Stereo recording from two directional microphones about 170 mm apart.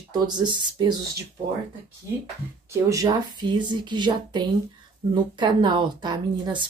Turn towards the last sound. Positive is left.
turn(degrees=-25)  # may be behind; listen again after turning